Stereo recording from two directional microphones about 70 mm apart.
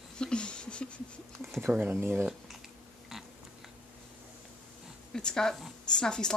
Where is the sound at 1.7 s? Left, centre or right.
Right.